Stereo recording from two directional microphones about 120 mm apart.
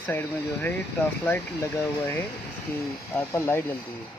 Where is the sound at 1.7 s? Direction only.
20° left (ahead or behind).